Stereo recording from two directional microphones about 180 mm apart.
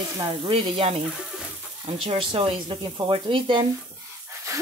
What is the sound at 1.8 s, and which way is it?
Child singing, 30° right (ahead or behind).